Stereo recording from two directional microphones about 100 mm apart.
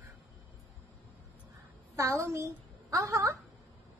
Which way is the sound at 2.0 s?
30° right (ahead or behind).